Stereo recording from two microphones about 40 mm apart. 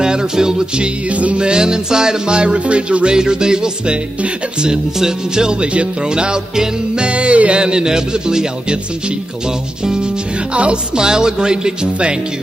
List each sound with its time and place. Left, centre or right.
0.0 s music: centre
1.1 s music: right
1.4 s music: centre
3.2 s music: centre
7.0 s music: right
10.5 s music: right
11.0 s music: centre